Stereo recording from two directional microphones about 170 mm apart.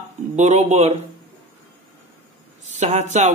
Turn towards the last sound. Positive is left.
turn(degrees=-45)  # may be behind; listen again after turning